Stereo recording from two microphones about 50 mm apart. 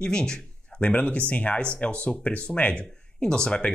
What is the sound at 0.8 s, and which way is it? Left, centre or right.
Speech, left.